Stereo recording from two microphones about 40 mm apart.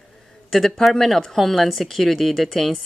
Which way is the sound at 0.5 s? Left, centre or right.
Centre.